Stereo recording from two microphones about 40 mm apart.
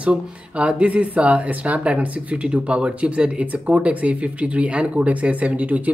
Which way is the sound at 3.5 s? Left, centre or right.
Right.